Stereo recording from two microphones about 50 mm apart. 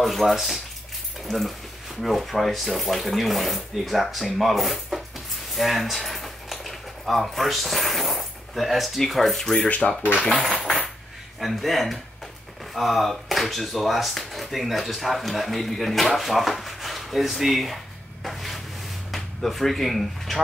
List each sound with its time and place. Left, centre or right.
0.0 s speech: centre
9.8 s speech: left
10.4 s speech: centre
18.2 s cupboard open or close: centre
19.1 s speech: centre